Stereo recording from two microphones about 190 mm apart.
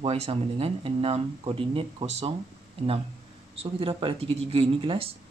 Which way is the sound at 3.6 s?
30° right (ahead or behind).